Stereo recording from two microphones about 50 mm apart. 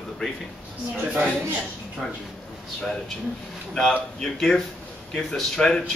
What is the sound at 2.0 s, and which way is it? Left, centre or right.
A man's voice, centre.